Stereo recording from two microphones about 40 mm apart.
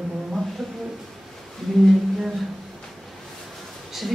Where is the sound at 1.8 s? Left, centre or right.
Centre.